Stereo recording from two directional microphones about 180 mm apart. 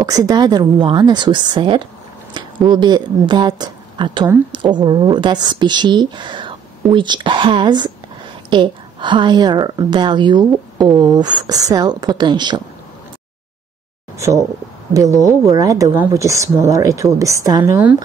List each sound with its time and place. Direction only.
0.0 s a woman's voice: 20° right (ahead or behind)
14.1 s a woman's voice: 15° right (ahead or behind)